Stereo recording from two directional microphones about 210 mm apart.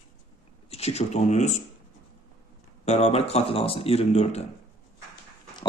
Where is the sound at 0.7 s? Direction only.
30° left (ahead or behind).